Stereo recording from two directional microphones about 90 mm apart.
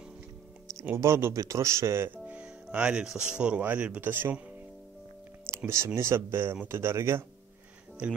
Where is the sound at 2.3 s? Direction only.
15° right (ahead or behind).